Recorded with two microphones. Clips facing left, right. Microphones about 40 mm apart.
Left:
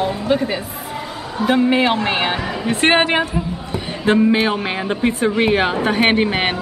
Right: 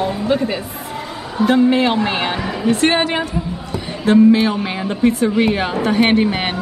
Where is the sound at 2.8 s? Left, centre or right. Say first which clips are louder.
Left 5 dB; left.